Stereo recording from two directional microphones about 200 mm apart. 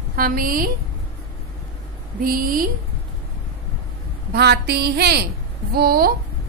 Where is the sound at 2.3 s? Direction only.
45° right (ahead or behind).